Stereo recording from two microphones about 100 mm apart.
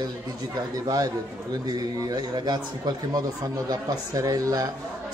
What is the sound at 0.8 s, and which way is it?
Speech, 35° right (ahead or behind).